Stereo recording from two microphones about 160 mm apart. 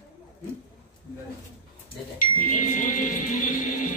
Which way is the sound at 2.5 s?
55° left (ahead or behind).